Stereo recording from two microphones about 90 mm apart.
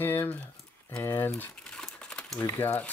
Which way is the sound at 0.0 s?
20° left (ahead or behind).